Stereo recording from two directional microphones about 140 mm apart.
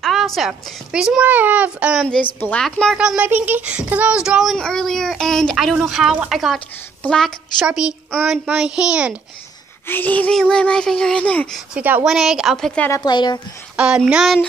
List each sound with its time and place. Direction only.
0.0 s a woman's voice: centre (ahead or behind)
2.4 s a child's voice: 5° left (ahead or behind)
9.8 s speech: 15° left (ahead or behind)
11.7 s a child's voice: 10° right (ahead or behind)
13.0 s speech: 30° left (ahead or behind)
13.7 s a child's voice: 5° right (ahead or behind)